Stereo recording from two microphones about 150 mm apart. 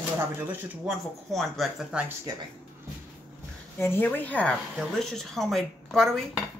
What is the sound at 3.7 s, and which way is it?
A woman's voice, 15° left (ahead or behind).